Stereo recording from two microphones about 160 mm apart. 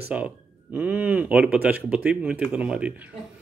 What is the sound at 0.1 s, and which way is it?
Speech, 5° right (ahead or behind).